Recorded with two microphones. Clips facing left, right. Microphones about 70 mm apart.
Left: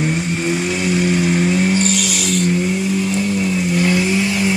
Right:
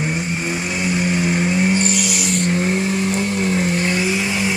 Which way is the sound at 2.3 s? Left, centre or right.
Right.